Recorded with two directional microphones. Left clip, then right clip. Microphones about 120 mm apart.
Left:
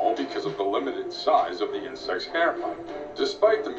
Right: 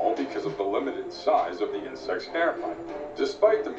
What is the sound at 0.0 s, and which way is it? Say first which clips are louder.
A man's voice: left 1 dB; centre (ahead or behind).